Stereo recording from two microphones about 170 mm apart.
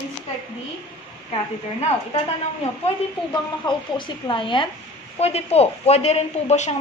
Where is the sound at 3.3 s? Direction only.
25° left (ahead or behind).